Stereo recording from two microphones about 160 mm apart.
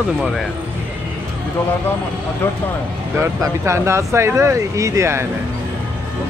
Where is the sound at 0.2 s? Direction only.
Centre (ahead or behind).